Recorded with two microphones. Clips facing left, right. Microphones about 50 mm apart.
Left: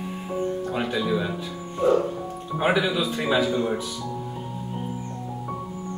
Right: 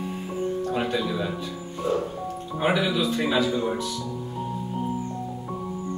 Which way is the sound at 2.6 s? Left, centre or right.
Centre.